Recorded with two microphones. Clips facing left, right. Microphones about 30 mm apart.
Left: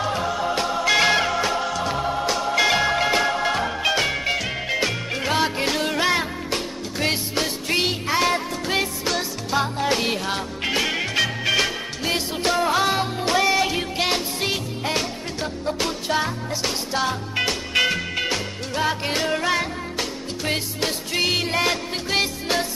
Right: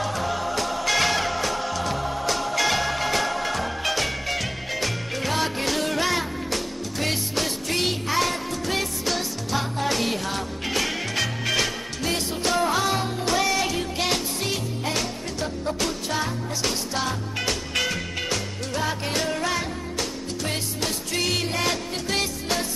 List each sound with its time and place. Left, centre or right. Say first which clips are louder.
0.4 s music: left 3 dB; left
1.6 s music: left 3 dB; centre; by 5.4 s left
5.4 s music: left 3 dB; centre
17.7 s music: left 8 dB; left